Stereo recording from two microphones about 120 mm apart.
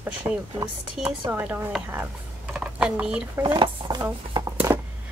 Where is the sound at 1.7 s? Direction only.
Centre (ahead or behind).